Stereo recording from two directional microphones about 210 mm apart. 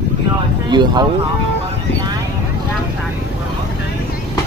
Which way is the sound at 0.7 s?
20° right (ahead or behind).